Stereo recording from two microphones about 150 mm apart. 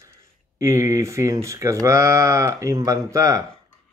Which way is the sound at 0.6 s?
20° right (ahead or behind).